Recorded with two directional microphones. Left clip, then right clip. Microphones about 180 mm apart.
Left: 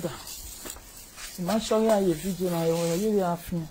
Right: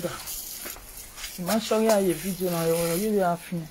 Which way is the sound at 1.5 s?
15° left (ahead or behind).